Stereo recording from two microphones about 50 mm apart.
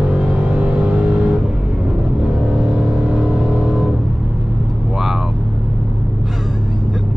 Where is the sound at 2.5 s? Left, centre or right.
Centre.